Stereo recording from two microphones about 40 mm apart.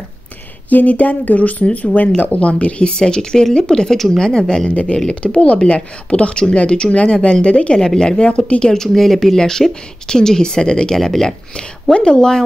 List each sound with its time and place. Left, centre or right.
0.7 s speech: left
2.9 s speech: centre
4.6 s speech: left
7.8 s speech: centre
8.7 s speech: centre
11.0 s speech: centre
11.9 s speech: left